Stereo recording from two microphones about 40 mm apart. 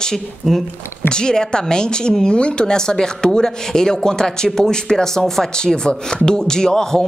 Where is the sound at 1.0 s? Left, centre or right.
Centre.